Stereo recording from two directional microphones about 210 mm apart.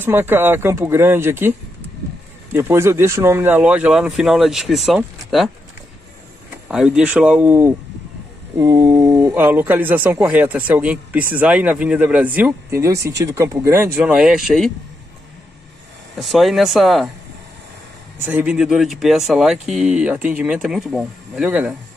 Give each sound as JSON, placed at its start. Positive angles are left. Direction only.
{"t": 0.0, "sound": "speech", "side_deg": -10}
{"t": 2.5, "sound": "speech", "side_deg": -10}
{"t": 6.7, "sound": "speech", "side_deg": -5}
{"t": 16.2, "sound": "speech", "side_deg": 0}
{"t": 18.2, "sound": "speech", "side_deg": -5}